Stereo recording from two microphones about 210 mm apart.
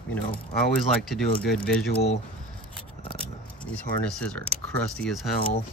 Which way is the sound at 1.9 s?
50° left (ahead or behind).